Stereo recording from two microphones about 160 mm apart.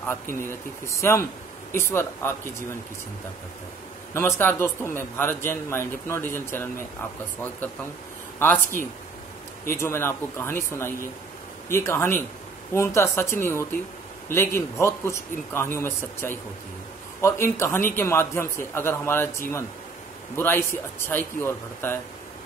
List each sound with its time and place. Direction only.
0.0 s a man's voice: 15° left (ahead or behind)
4.1 s a man's voice: 15° left (ahead or behind)
8.4 s a man's voice: 15° left (ahead or behind)